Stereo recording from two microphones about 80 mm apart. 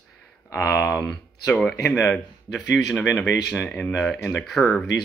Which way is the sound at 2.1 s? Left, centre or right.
Centre.